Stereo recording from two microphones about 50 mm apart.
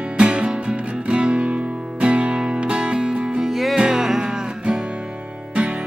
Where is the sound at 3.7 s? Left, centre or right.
Centre.